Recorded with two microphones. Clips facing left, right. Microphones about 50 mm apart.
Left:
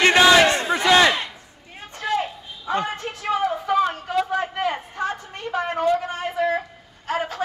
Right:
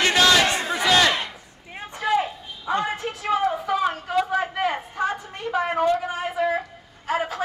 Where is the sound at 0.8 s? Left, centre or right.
Centre.